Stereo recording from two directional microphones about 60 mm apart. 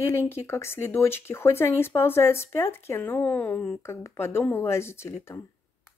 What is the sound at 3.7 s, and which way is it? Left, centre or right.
Speech, left.